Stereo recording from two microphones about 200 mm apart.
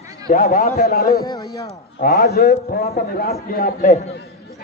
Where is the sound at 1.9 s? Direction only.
50° left (ahead or behind).